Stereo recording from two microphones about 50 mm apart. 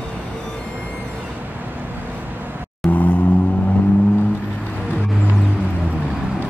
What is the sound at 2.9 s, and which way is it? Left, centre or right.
Vehicle, left.